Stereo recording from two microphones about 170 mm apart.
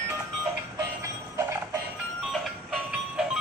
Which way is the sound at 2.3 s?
5° right (ahead or behind).